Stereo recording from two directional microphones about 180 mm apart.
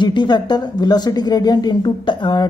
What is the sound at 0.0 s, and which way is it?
Speech, 25° left (ahead or behind).